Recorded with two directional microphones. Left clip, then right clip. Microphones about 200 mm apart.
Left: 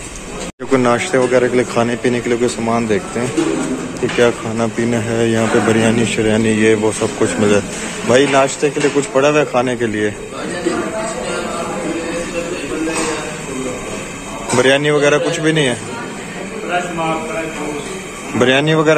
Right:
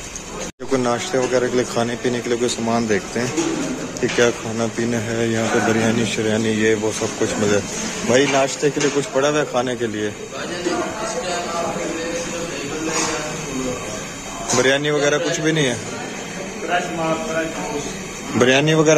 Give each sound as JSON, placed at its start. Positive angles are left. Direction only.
{"t": 0.7, "sound": "speech", "side_deg": 0}
{"t": 2.7, "sound": "speech", "side_deg": -20}
{"t": 4.9, "sound": "speech", "side_deg": 0}
{"t": 14.6, "sound": "speech", "side_deg": 0}
{"t": 18.4, "sound": "speech", "side_deg": -20}